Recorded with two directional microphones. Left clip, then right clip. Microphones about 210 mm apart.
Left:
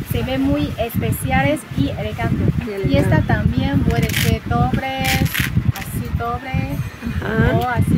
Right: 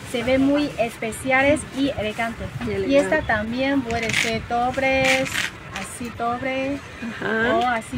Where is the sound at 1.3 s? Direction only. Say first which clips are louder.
Right 1 dB; 10° right (ahead or behind).